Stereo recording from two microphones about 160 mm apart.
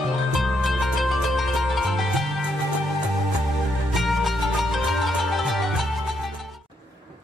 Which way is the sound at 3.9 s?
Centre (ahead or behind).